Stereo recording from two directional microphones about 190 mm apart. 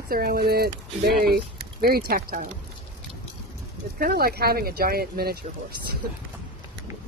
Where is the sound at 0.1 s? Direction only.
50° right (ahead or behind).